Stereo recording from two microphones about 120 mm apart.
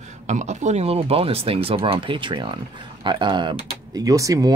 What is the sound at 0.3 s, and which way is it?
Speech, 80° right.